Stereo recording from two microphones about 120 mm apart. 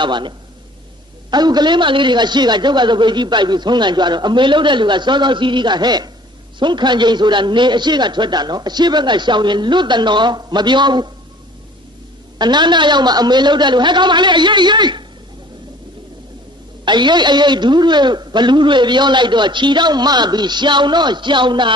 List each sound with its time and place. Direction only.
0.0 s a man's voice: 40° right (ahead or behind)
1.3 s a man's voice: 35° right (ahead or behind)
12.4 s a man's voice: 40° right (ahead or behind)
16.8 s a man's voice: 40° right (ahead or behind)